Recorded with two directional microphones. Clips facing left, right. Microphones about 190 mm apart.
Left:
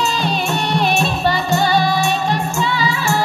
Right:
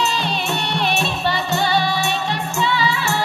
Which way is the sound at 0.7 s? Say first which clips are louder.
Left 5 dB; 45° left (ahead or behind).